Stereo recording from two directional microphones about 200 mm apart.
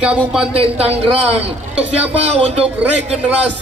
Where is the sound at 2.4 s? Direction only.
30° right (ahead or behind).